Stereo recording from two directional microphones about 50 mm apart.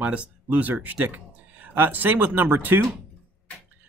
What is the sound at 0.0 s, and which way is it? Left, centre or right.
Speech, right.